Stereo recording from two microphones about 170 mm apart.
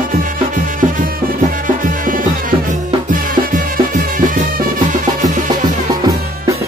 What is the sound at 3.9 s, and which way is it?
Music, 50° right (ahead or behind).